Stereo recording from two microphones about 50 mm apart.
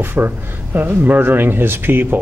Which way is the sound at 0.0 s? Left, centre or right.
Right.